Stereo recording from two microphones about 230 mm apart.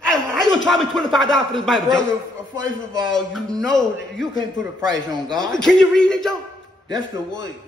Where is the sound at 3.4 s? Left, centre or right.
Centre.